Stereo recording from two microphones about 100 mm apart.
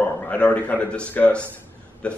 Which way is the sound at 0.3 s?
15° left (ahead or behind).